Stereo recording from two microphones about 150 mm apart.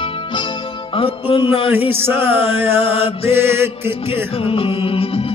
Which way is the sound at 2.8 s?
40° left (ahead or behind).